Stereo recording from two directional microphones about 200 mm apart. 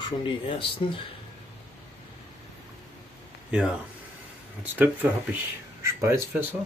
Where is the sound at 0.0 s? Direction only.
25° left (ahead or behind).